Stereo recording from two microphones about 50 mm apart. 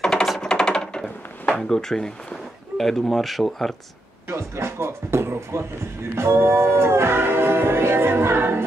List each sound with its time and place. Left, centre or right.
0.0 s music: centre
1.6 s speech: centre
4.3 s music: right